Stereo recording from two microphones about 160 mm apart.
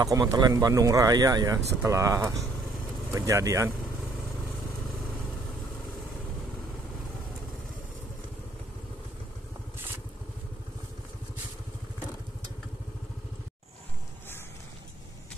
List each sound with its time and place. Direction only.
0.0 s speech: 20° right (ahead or behind)